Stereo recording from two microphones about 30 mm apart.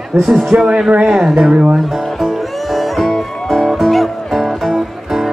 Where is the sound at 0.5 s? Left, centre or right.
Right.